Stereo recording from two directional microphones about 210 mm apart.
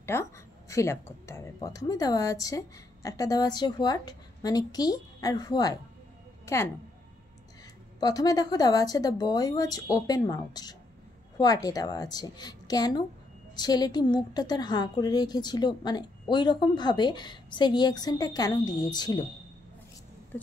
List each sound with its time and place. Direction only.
0.0 s speech: 15° left (ahead or behind)
8.0 s a woman's voice: 15° left (ahead or behind)